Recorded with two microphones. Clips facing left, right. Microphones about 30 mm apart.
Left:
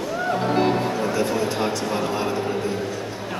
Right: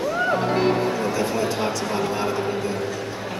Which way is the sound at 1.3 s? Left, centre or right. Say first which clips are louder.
Even; centre.